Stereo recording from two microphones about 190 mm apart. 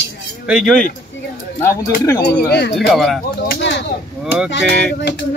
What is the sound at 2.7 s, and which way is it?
Speech, centre (ahead or behind).